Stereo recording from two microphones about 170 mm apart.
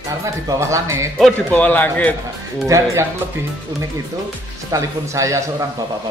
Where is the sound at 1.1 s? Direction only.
5° left (ahead or behind).